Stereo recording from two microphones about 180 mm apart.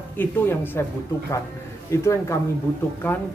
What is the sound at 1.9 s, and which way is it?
Speech, 15° left (ahead or behind).